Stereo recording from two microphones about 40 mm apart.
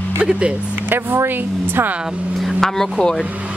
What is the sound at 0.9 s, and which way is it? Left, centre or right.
Speech, right.